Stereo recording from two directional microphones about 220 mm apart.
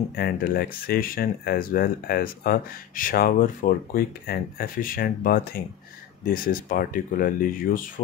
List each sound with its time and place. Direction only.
0.1 s speech: 45° left (ahead or behind)